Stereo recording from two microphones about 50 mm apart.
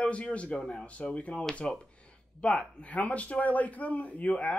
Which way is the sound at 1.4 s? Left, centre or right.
Centre.